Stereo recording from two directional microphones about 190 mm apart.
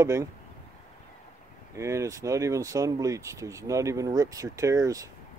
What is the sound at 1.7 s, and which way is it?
Speech, 15° right (ahead or behind).